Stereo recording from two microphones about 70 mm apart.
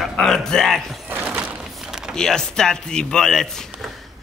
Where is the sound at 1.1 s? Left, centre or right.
Centre.